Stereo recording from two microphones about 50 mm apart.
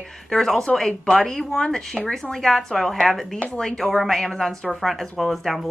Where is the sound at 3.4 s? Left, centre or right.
Centre.